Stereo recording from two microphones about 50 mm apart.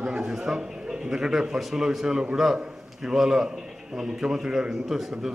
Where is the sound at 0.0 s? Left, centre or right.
Centre.